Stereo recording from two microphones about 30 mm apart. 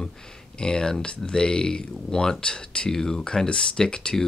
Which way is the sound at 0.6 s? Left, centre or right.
Left.